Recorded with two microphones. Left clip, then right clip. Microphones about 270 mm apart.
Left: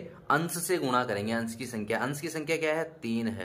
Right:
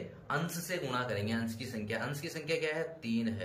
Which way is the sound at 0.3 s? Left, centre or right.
Centre.